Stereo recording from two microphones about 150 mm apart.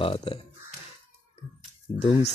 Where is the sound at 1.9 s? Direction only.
35° left (ahead or behind).